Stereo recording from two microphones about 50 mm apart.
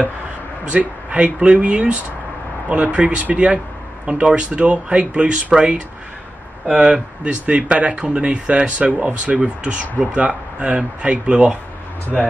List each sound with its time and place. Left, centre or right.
0.7 s speech: right
12.1 s speech: centre